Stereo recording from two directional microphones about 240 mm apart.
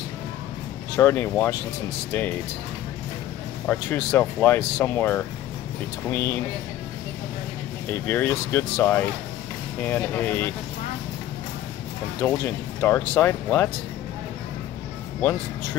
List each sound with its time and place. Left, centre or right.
0.9 s speech: centre
3.6 s speech: centre
7.9 s speech: centre
12.2 s speech: centre